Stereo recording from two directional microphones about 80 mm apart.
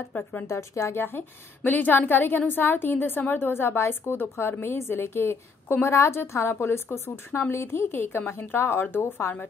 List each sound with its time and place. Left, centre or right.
0.1 s a woman's voice: left
0.5 s a woman's voice: left